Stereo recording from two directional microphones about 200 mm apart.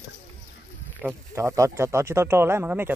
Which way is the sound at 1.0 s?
15° right (ahead or behind).